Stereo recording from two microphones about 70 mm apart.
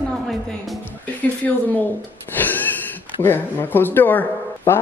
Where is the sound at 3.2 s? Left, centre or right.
Left.